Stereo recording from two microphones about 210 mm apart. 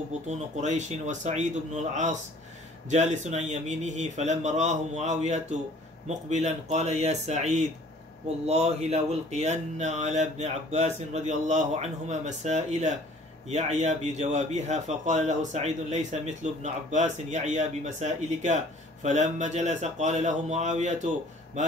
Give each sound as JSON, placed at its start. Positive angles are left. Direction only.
{"t": 0.3, "sound": "a man's voice", "side_deg": -35}